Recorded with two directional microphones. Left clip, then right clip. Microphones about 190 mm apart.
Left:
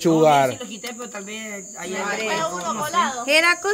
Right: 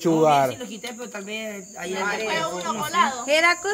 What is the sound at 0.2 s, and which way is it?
Speech, 20° left (ahead or behind).